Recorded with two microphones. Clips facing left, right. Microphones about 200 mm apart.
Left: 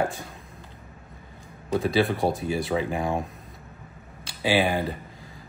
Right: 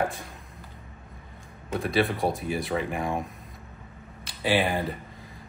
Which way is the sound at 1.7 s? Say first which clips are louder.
Left 3 dB; centre (ahead or behind).